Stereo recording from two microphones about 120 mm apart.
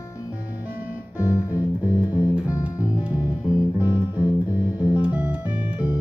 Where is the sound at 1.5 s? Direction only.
15° right (ahead or behind).